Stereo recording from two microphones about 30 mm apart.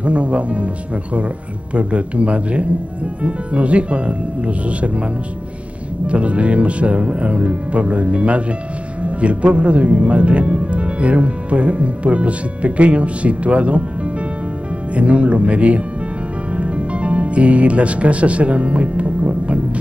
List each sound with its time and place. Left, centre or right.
0.0 s speech: right
1.7 s speech: right
6.0 s speech: right
15.0 s speech: right